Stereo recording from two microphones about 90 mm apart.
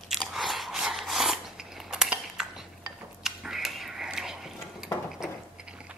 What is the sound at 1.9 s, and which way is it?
Cutlery, 5° right (ahead or behind).